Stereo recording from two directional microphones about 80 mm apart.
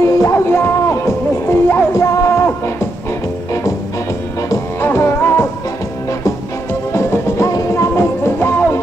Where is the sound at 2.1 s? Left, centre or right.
Left.